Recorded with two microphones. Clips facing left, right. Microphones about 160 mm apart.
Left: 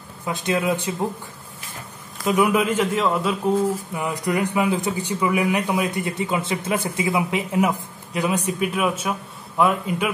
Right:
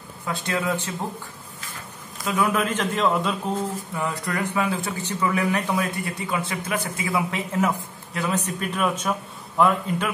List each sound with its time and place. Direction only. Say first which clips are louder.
0.3 s speech: left 3 dB; 20° left (ahead or behind)
2.2 s speech: left 4 dB; 15° left (ahead or behind)
3.9 s speech: left 4 dB; 15° left (ahead or behind)